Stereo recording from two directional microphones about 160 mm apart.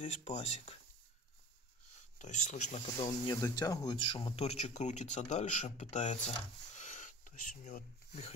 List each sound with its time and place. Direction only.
0.0 s speech: 40° left (ahead or behind)
2.1 s speech: 50° left (ahead or behind)